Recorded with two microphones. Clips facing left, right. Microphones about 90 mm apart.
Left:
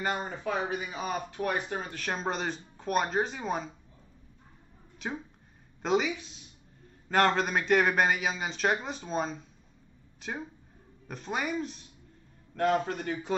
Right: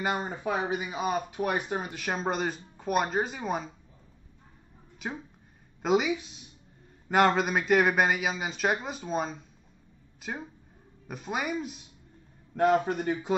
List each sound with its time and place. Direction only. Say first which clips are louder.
0.0 s speech: right 2 dB; 10° right (ahead or behind)
4.9 s a sound: even; 5° right (ahead or behind)
5.8 s speech: right 2 dB; 5° right (ahead or behind)
12.5 s speech: right 3 dB; 15° right (ahead or behind)